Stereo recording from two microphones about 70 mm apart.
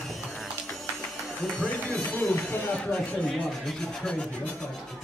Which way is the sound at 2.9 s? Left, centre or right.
Centre.